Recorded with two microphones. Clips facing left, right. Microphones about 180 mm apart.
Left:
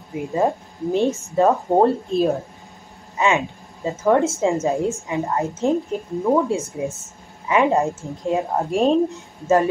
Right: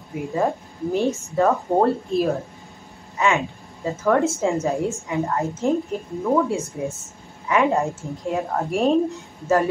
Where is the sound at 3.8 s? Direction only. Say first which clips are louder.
Left 2 dB; 20° left (ahead or behind).